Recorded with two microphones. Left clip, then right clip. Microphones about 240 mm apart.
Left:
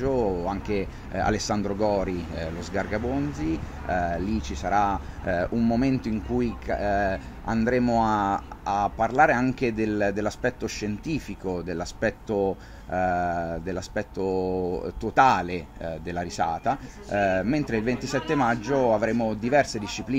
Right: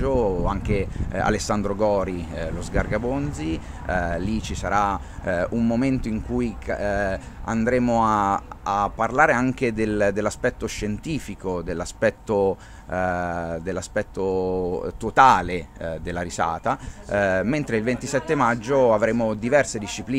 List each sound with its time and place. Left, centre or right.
0.5 s speech: right